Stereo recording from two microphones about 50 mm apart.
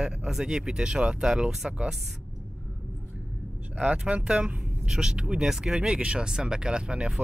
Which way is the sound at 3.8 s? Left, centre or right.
Right.